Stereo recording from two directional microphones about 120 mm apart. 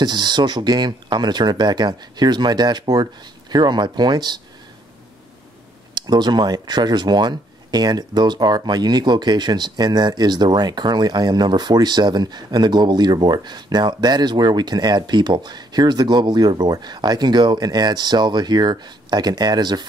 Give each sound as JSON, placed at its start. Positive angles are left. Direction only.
{"t": 0.0, "sound": "speech", "side_deg": -35}
{"t": 5.9, "sound": "speech", "side_deg": -35}